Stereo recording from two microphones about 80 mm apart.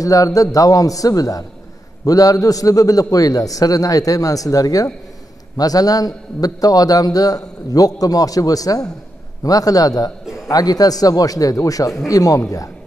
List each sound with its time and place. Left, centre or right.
0.0 s a man's voice: left
10.2 s a sound: centre
10.5 s a man's voice: left